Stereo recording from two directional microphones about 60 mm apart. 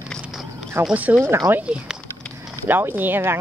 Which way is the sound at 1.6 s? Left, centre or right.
Centre.